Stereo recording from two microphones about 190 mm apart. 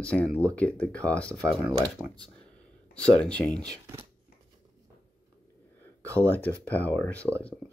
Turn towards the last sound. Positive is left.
turn(degrees=10)  # may be behind; listen again after turning